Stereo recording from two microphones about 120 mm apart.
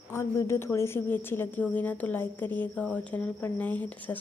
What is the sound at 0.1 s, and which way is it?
A woman's voice, 25° left (ahead or behind).